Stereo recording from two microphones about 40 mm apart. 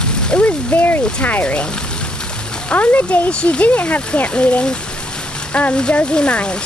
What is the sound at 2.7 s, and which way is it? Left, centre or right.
Speech, left.